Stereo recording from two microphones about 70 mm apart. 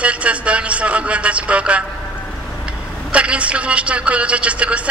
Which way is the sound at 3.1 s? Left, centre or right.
Centre.